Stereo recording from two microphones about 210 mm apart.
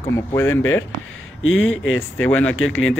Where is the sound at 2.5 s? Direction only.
70° left (ahead or behind).